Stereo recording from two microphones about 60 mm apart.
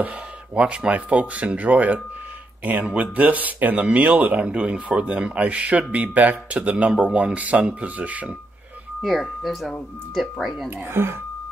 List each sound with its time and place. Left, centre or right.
0.6 s speech: centre
9.0 s speech: centre
10.9 s speech: right